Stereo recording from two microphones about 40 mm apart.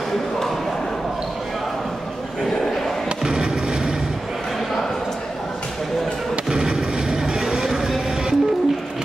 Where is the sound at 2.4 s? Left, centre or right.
Centre.